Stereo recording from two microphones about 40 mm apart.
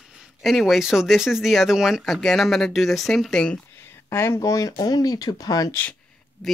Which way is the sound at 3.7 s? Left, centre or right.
Left.